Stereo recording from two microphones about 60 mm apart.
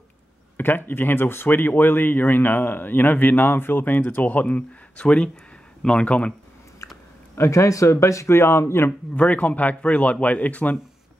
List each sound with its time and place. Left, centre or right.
0.6 s speech: left
7.3 s speech: left
9.1 s speech: left